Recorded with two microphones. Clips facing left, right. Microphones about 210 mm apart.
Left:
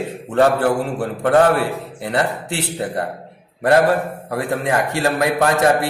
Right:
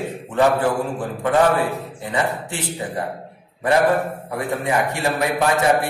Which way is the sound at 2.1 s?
70° left (ahead or behind).